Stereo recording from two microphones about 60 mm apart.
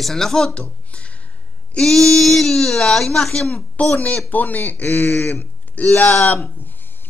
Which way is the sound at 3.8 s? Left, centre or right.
Left.